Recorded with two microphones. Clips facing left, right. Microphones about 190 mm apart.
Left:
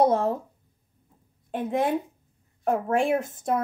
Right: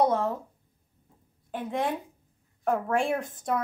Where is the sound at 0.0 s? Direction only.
25° left (ahead or behind).